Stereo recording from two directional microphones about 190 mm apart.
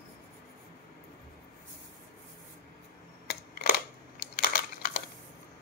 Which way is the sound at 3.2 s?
55° left (ahead or behind).